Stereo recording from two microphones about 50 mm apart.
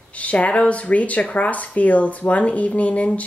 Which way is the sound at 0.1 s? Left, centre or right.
Left.